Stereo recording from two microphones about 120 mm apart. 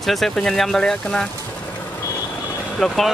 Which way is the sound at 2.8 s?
5° left (ahead or behind).